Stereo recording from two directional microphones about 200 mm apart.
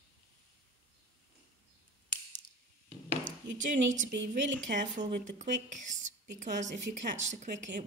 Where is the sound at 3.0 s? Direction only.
40° right (ahead or behind).